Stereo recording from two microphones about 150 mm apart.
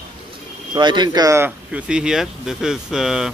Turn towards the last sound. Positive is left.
turn(degrees=-5)  # may be behind; listen again after turning